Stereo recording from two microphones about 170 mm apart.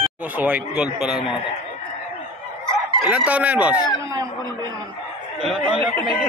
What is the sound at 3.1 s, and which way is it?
Speech, 10° right (ahead or behind).